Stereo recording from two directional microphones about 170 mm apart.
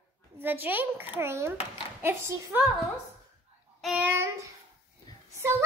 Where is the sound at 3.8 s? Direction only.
Centre (ahead or behind).